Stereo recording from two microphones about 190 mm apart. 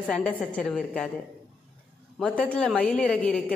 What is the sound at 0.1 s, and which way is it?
Speech, 5° left (ahead or behind).